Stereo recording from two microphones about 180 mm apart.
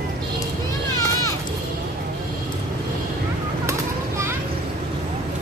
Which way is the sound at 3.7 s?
15° right (ahead or behind).